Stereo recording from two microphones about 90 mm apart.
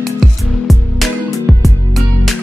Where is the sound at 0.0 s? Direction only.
Centre (ahead or behind).